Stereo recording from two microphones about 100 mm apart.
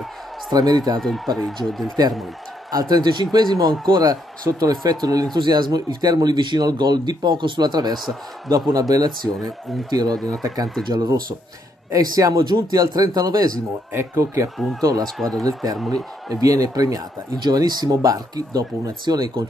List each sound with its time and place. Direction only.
0.5 s a man's voice: 40° right (ahead or behind)
0.9 s speech: centre (ahead or behind)
2.7 s a man's voice: 40° right (ahead or behind)
11.9 s a man's voice: 35° right (ahead or behind)
13.9 s a man's voice: 30° right (ahead or behind)
15.1 s speech: 5° left (ahead or behind)
15.4 s a man's voice: 40° right (ahead or behind)